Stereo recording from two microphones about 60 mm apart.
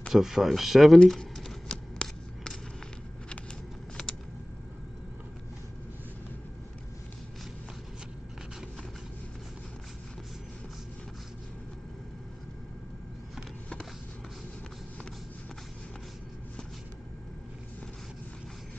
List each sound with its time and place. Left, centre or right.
0.1 s speech: centre
1.7 s shuffling cards: centre